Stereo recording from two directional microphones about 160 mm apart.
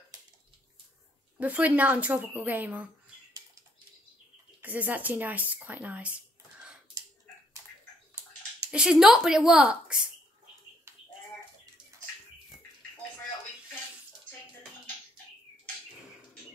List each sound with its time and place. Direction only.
0.1 s bathtub: 25° right (ahead or behind)
1.4 s speech: 10° right (ahead or behind)
4.6 s speech: 10° right (ahead or behind)
8.6 s speech: 5° right (ahead or behind)
10.9 s a sound: 15° right (ahead or behind)